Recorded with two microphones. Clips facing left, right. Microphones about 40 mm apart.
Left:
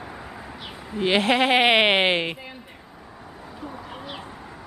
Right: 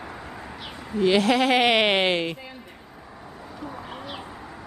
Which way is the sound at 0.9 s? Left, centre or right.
Left.